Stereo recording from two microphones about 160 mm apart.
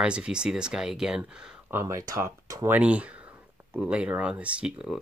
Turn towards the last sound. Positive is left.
turn(degrees=-5)  # may be behind; listen again after turning